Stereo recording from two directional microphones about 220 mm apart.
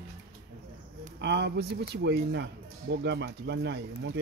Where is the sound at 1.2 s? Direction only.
50° right (ahead or behind).